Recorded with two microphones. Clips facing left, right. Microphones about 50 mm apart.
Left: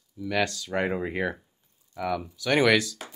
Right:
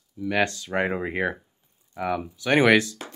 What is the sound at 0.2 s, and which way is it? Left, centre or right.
Speech, right.